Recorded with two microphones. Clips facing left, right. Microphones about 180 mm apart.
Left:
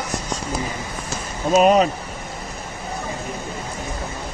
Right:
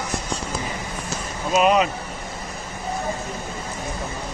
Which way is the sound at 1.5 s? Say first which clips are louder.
Left 3 dB; 40° left (ahead or behind).